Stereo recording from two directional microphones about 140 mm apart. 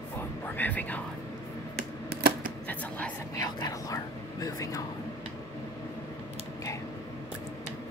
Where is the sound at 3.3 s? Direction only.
25° left (ahead or behind).